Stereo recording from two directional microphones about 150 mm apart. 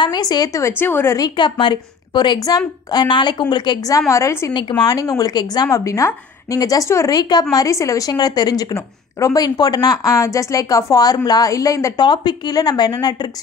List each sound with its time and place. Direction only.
0.0 s a woman's voice: 30° left (ahead or behind)